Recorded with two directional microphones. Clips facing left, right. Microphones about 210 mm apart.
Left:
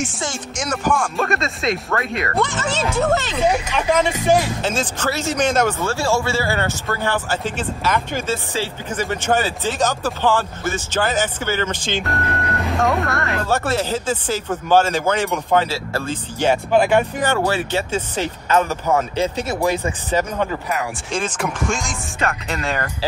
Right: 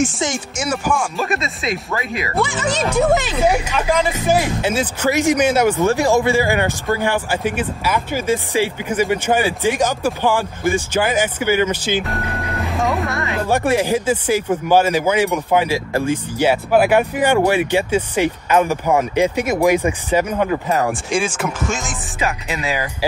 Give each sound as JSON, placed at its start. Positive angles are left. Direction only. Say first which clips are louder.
{"t": 0.6, "sound": "speech", "louder": "even", "side_deg": -5}
{"t": 13.5, "sound": "speech", "louder": "right 5 dB", "side_deg": -15}